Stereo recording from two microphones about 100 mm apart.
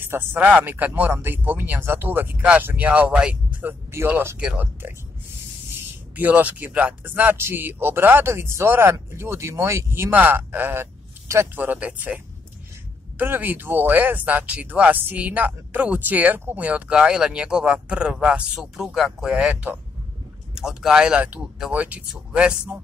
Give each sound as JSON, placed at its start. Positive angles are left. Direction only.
{"t": 0.0, "sound": "speech", "side_deg": -25}
{"t": 3.9, "sound": "speech", "side_deg": -25}
{"t": 6.1, "sound": "speech", "side_deg": -15}
{"t": 13.2, "sound": "speech", "side_deg": -20}
{"t": 20.5, "sound": "speech", "side_deg": -5}